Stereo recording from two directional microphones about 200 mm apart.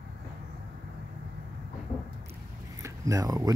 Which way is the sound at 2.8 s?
15° right (ahead or behind).